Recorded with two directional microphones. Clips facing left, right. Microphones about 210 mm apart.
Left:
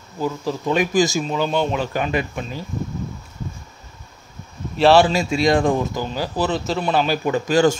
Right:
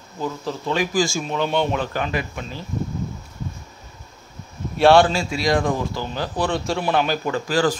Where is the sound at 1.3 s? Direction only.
Centre (ahead or behind).